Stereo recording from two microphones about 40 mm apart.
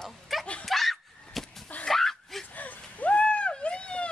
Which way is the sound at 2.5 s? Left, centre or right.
Left.